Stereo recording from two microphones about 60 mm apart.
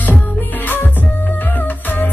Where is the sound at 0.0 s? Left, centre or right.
Left.